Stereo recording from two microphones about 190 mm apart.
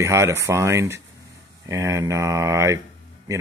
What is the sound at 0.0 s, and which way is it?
Speech, 15° right (ahead or behind).